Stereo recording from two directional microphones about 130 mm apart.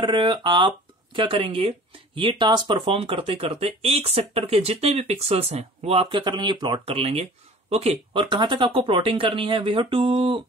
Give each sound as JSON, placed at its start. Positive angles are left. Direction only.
{"t": 0.0, "sound": "speech", "side_deg": -35}
{"t": 6.2, "sound": "speech", "side_deg": -35}
{"t": 6.9, "sound": "speech", "side_deg": -50}